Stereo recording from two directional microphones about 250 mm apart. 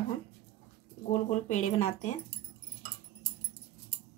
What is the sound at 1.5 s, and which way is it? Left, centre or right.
Speech, left.